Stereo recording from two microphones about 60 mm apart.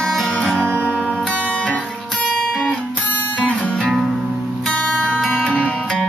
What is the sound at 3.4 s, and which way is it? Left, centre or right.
Music, left.